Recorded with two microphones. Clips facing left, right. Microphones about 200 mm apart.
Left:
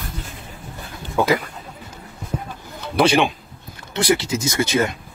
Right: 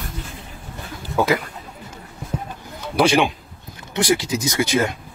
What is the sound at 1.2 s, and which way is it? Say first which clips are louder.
Speech: left 1 dB; centre (ahead or behind).